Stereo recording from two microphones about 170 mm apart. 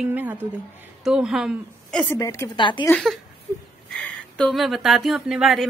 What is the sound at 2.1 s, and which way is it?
Speech, 15° left (ahead or behind).